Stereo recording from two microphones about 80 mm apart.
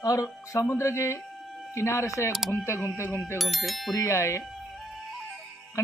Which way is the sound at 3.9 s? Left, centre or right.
Left.